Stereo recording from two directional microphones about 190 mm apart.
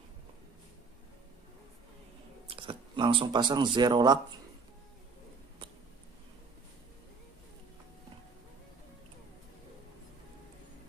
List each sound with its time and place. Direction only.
2.4 s speech: 30° right (ahead or behind)